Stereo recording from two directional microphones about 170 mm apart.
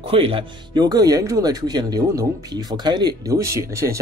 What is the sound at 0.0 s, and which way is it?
Speech, 35° right (ahead or behind).